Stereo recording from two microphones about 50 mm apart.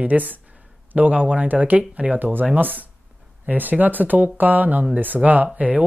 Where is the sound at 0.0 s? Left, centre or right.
Right.